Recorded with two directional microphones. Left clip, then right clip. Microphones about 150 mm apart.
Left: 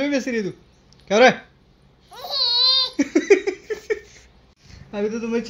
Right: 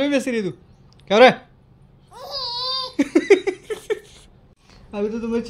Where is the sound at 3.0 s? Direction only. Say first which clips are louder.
Right 1 dB; 25° right (ahead or behind).